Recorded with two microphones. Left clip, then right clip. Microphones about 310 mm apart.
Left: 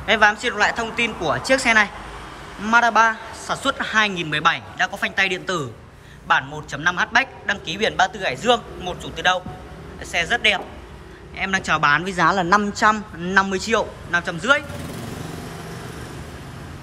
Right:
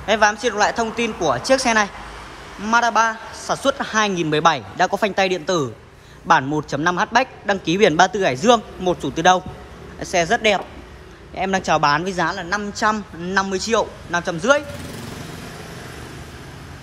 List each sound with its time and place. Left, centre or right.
0.0 s a man's voice: centre